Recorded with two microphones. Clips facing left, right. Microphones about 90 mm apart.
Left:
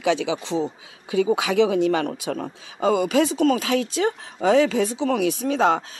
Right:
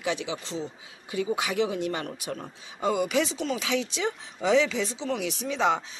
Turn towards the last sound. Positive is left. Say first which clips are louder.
# left 6 dB
turn(degrees=45)  # may be behind; listen again after turning